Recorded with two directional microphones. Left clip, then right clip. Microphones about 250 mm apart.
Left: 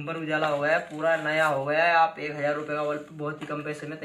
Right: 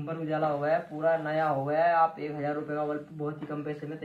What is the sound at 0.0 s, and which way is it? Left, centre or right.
Speech, centre.